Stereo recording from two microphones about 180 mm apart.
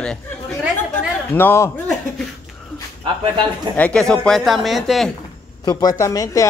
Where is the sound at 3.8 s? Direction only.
5° left (ahead or behind).